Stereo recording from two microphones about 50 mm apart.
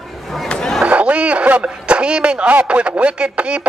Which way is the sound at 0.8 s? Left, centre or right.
Right.